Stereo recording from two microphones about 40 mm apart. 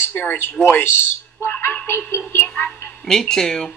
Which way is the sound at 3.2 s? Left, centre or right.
Centre.